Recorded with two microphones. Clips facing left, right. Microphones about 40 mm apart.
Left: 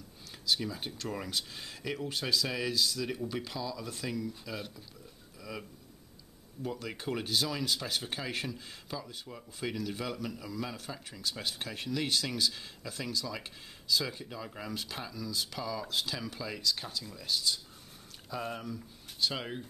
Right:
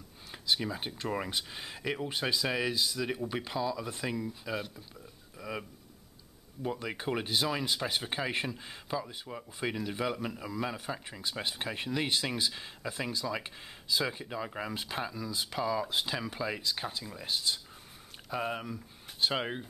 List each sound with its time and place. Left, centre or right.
0.3 s speech: right